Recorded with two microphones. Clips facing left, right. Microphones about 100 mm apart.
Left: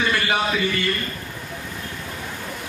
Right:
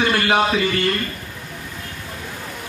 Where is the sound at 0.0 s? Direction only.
60° right (ahead or behind).